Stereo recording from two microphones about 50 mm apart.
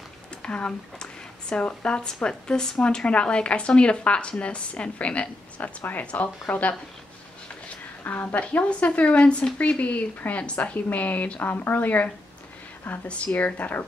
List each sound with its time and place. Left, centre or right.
0.4 s a woman's voice: left
8.0 s a woman's voice: left
13.0 s a woman's voice: left
13.4 s a woman's voice: left